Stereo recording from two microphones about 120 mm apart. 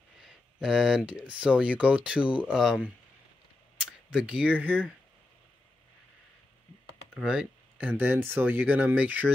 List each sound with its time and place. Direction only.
0.6 s speech: 5° right (ahead or behind)
7.2 s speech: 10° right (ahead or behind)